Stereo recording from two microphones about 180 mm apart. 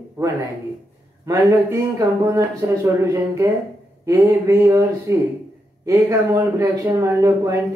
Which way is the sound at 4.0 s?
15° right (ahead or behind).